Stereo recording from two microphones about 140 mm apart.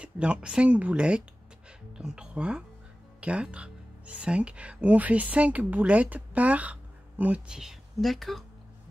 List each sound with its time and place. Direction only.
0.0 s speech: 10° right (ahead or behind)